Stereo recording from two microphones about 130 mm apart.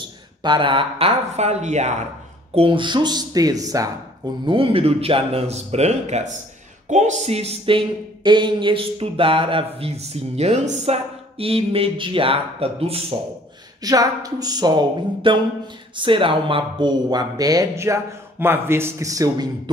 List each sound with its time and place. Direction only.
0.4 s speech: 35° right (ahead or behind); by 2.0 s 60° right (ahead or behind)
2.5 s speech: 40° right (ahead or behind); by 3.9 s 25° right (ahead or behind)
4.5 s speech: 40° right (ahead or behind)
13.8 s speech: 30° right (ahead or behind)